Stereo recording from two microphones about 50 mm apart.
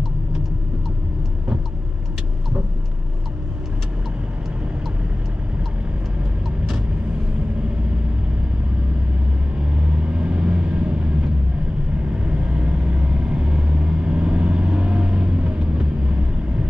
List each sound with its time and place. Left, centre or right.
9.9 s vehicle: right